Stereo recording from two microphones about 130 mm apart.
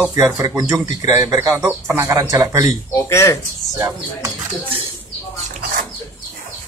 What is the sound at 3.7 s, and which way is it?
Speech, 25° right (ahead or behind).